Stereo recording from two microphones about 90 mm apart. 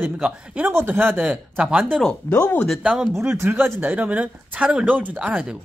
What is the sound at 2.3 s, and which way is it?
Speech, 20° left (ahead or behind).